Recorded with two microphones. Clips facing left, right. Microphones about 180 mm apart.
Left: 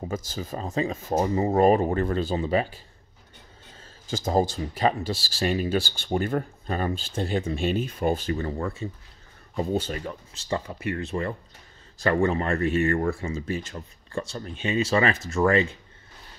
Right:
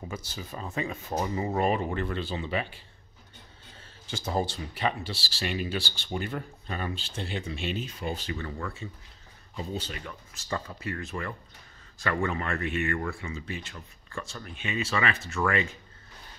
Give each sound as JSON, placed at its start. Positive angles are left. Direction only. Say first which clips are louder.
{"t": 0.1, "sound": "speech", "louder": "left 7 dB", "side_deg": 45}
{"t": 4.1, "sound": "speech", "louder": "left 6 dB", "side_deg": 40}
{"t": 9.6, "sound": "speech", "louder": "left 9 dB", "side_deg": 50}